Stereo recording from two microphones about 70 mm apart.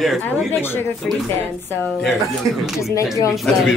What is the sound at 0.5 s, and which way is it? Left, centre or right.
Speech, left.